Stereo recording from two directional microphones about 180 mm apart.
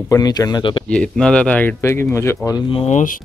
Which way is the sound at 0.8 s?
5° left (ahead or behind).